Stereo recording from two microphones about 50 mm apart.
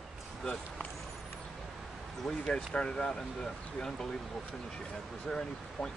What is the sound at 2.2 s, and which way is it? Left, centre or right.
Speech, centre.